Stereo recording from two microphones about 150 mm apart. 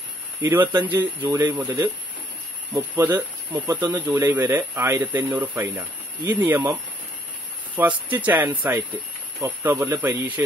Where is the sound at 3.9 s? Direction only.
15° right (ahead or behind).